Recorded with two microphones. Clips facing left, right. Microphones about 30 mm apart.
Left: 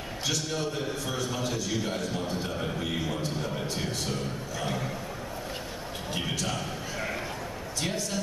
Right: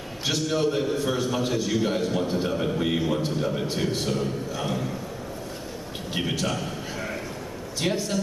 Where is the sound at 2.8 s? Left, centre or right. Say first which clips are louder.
Right 6 dB; centre.